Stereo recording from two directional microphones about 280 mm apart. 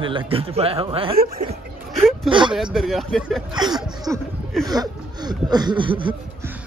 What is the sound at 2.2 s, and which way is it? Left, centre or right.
Speech, centre.